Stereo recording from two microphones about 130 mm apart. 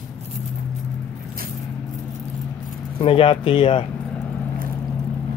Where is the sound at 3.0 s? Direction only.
40° left (ahead or behind).